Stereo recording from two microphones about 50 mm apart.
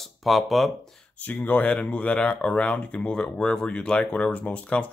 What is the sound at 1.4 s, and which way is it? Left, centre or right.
Speech, left.